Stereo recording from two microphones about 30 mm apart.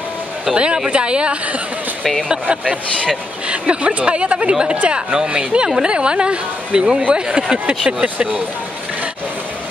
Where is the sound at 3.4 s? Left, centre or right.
Right.